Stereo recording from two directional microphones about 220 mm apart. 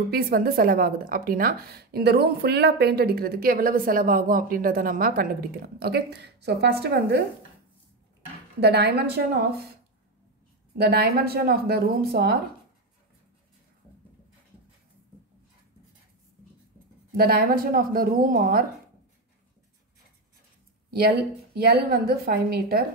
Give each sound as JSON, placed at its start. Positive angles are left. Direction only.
{"t": 0.1, "sound": "a woman's voice", "side_deg": -45}
{"t": 8.5, "sound": "a woman's voice", "side_deg": -50}
{"t": 10.8, "sound": "a woman's voice", "side_deg": -45}
{"t": 17.2, "sound": "a woman's voice", "side_deg": -45}
{"t": 20.9, "sound": "a woman's voice", "side_deg": -45}